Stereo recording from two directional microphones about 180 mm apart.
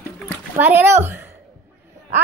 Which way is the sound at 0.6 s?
10° right (ahead or behind).